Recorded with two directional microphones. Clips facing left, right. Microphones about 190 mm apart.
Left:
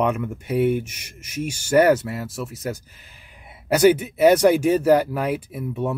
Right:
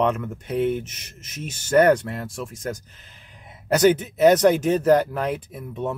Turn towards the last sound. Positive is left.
turn(degrees=10)  # may be behind; listen again after turning